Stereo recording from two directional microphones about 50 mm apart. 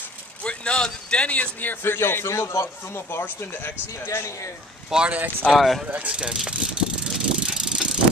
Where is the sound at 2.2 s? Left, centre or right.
Left.